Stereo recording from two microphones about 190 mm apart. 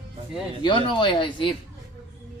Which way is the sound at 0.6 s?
25° left (ahead or behind).